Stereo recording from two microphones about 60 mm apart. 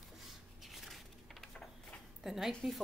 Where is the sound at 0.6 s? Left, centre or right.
Centre.